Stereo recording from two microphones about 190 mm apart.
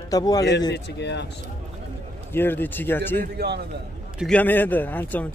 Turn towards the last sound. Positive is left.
turn(degrees=10)  # may be behind; listen again after turning